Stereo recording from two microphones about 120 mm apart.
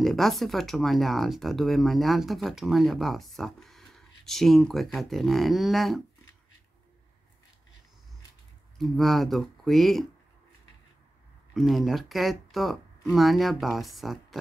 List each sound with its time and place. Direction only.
0.0 s speech: centre (ahead or behind)
8.7 s speech: centre (ahead or behind)
11.5 s speech: centre (ahead or behind)